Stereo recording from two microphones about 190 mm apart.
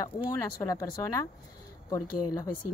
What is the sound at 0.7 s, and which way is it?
Speech, 15° left (ahead or behind).